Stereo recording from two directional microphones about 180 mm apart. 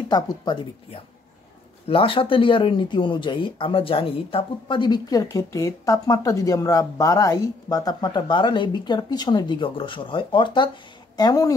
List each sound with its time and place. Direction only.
0.1 s speech: 25° left (ahead or behind)